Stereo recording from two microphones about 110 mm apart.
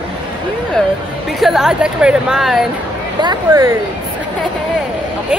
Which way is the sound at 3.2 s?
40° right (ahead or behind).